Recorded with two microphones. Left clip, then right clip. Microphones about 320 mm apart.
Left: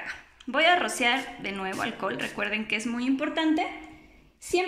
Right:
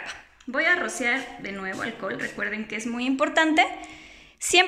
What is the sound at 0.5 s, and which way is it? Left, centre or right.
Speech, centre.